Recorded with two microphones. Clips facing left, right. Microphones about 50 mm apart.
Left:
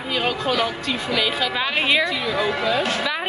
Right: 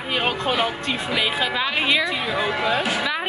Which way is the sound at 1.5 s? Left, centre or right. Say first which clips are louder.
Left 2 dB; centre.